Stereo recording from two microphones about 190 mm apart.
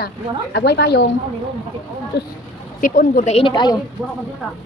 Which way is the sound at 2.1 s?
60° left (ahead or behind).